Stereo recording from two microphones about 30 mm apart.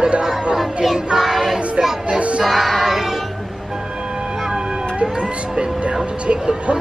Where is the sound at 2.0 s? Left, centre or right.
Right.